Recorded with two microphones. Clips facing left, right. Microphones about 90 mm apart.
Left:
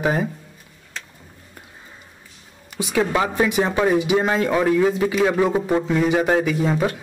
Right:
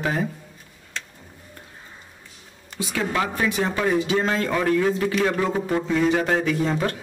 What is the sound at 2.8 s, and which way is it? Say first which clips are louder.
Speech: left 4 dB; 15° left (ahead or behind).